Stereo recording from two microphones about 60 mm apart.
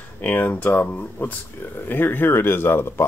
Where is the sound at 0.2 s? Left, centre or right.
Left.